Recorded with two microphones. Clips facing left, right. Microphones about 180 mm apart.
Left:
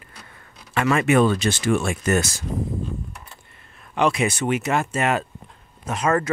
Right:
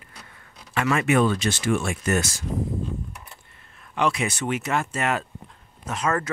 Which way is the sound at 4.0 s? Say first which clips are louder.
Left 4 dB; 15° left (ahead or behind).